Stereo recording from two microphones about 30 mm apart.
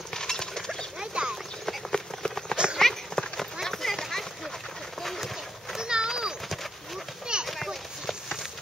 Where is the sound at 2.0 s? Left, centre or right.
Centre.